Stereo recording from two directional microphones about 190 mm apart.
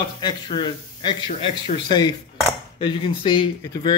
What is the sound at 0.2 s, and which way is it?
Speech, 25° left (ahead or behind).